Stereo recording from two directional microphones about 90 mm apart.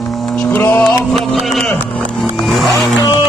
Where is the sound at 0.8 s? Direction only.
Centre (ahead or behind).